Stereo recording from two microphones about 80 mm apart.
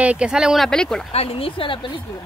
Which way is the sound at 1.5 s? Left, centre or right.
Left.